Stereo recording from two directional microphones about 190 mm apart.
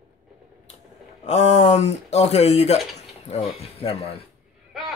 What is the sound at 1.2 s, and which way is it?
Speech, 35° left (ahead or behind).